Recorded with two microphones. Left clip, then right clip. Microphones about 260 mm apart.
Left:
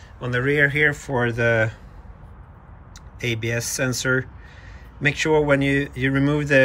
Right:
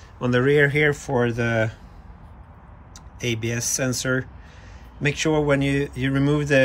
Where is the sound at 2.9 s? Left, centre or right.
Centre.